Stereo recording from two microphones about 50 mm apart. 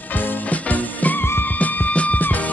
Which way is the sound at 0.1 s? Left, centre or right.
Left.